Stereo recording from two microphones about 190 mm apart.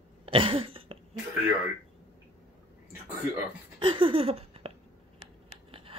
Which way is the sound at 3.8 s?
25° right (ahead or behind).